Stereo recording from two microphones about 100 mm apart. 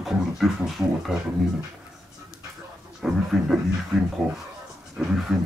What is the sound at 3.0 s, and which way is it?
Speech, 5° right (ahead or behind).